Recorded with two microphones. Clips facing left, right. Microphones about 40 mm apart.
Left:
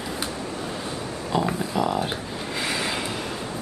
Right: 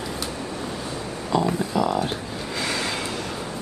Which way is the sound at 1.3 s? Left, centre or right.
Left.